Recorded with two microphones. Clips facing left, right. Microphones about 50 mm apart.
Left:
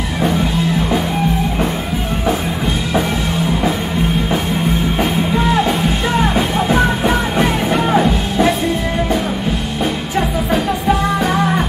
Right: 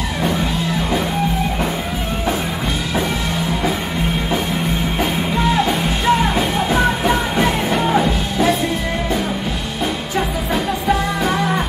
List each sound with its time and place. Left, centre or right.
7.3 s music: centre